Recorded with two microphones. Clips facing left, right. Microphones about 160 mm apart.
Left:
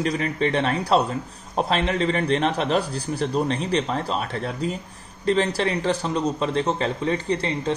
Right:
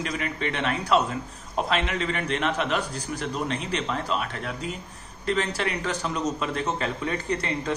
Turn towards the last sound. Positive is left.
turn(degrees=30)  # may be behind; listen again after turning